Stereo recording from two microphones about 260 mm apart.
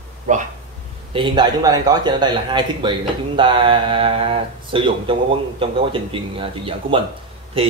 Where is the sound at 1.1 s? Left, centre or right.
Centre.